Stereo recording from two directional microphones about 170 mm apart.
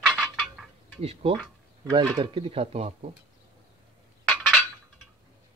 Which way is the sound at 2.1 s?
30° right (ahead or behind).